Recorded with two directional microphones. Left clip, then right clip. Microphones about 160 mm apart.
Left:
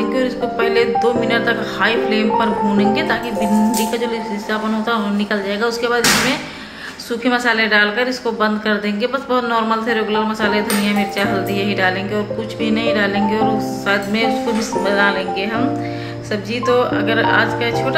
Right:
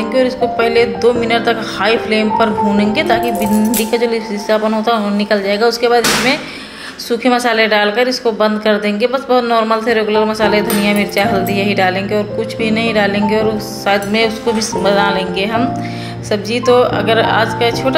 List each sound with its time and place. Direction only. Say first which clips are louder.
0.1 s a woman's voice: right 5 dB; 20° right (ahead or behind)